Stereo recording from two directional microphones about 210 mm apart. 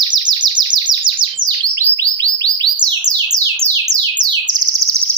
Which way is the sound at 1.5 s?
15° right (ahead or behind).